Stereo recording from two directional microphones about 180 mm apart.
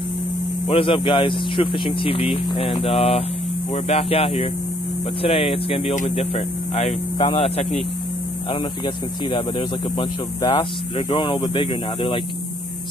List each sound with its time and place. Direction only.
0.7 s speech: 30° left (ahead or behind)
8.8 s speech: 25° left (ahead or behind)